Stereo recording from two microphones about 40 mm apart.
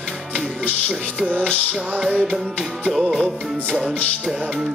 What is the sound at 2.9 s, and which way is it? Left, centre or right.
Music, centre.